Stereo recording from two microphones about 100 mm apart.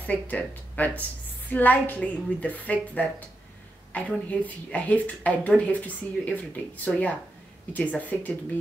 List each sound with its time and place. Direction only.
0.0 s speech: 15° left (ahead or behind)